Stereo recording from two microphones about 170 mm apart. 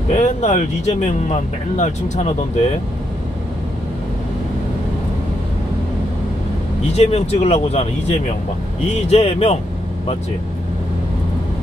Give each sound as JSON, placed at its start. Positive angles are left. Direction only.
{"t": 0.1, "sound": "speech", "side_deg": 45}
{"t": 7.0, "sound": "speech", "side_deg": 40}